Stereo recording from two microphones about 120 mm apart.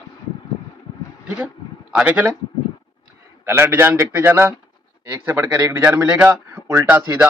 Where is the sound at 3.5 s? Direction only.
15° right (ahead or behind).